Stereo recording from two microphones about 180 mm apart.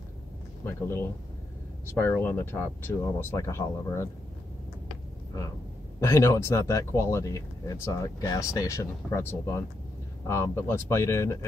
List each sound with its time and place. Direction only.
0.7 s speech: 15° left (ahead or behind)
5.9 s speech: 15° left (ahead or behind)